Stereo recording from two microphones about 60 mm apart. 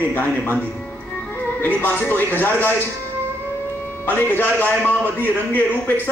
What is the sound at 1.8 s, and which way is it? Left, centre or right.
Speech, left.